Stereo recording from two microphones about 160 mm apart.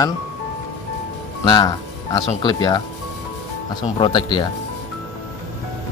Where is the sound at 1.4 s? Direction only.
25° left (ahead or behind).